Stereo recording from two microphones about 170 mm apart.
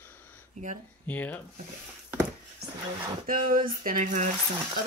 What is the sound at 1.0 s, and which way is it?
Speech, 10° left (ahead or behind).